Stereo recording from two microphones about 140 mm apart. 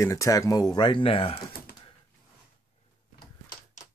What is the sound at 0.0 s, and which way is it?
Speech, 20° left (ahead or behind).